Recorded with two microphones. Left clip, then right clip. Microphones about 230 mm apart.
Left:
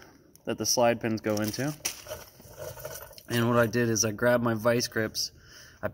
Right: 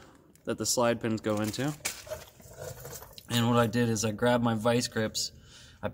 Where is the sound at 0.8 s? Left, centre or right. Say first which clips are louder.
Left 3 dB; centre.